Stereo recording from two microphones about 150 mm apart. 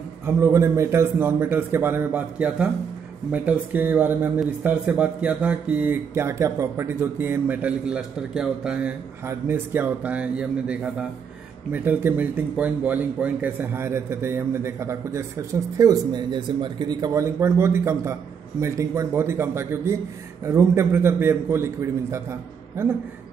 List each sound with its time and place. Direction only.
0.2 s speech: 20° right (ahead or behind)
9.2 s speech: 15° right (ahead or behind)